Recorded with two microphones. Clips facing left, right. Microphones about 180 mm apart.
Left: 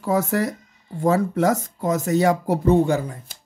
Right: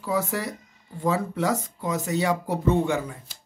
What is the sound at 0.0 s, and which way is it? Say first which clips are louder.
Speech: left 6 dB; 45° left (ahead or behind).